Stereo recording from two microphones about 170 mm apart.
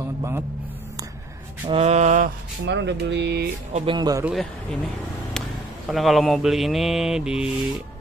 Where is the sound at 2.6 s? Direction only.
90° right.